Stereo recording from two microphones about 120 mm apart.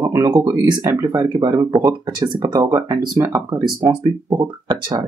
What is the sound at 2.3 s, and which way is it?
Speech, 40° right (ahead or behind).